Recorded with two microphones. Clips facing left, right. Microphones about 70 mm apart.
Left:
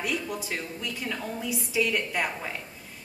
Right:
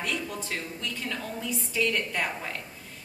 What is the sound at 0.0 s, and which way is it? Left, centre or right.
A woman's voice, centre.